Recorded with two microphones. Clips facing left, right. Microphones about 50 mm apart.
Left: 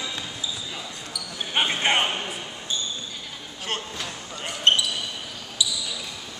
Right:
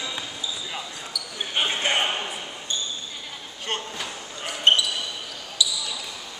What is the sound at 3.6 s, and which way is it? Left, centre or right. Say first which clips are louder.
Basketball bounce: right 1 dB; centre.